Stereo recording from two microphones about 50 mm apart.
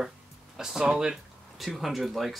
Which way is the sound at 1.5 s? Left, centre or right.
Centre.